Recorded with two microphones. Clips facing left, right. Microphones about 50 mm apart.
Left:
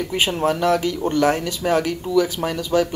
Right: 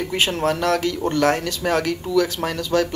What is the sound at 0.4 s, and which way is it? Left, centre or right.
Speech, centre.